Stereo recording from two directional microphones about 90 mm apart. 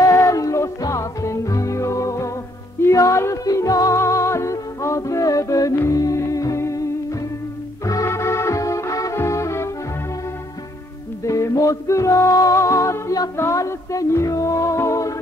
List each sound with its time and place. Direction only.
0.0 s music: 35° left (ahead or behind)
7.8 s music: 35° left (ahead or behind)
11.2 s music: 35° left (ahead or behind)